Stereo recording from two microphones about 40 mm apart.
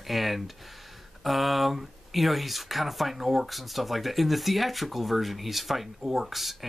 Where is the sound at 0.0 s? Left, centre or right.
Centre.